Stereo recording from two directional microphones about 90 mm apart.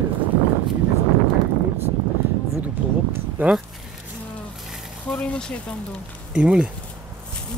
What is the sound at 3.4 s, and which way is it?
Speech, 20° right (ahead or behind).